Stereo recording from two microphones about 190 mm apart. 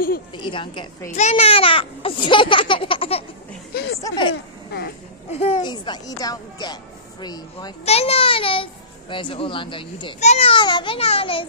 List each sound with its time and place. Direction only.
0.4 s speech: 25° left (ahead or behind)
5.4 s speech: 30° left (ahead or behind)
7.8 s speech: 35° left (ahead or behind)